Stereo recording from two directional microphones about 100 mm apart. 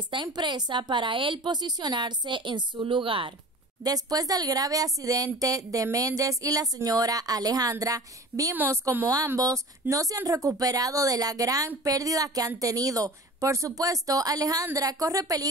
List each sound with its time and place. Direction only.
0.1 s a woman's voice: 50° right (ahead or behind)
3.8 s a woman's voice: 40° right (ahead or behind)
8.5 s a woman's voice: 25° right (ahead or behind)